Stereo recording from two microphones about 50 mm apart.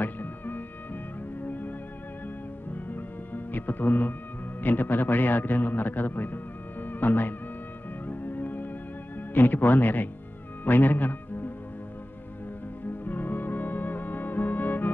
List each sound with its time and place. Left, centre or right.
0.0 s music: left
2.9 s music: left
4.6 s a man's voice: left
8.1 s music: left
9.3 s speech: left
10.6 s music: left
13.0 s music: left